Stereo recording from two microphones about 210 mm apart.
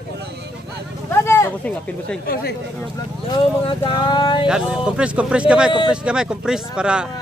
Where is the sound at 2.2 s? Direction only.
45° left (ahead or behind).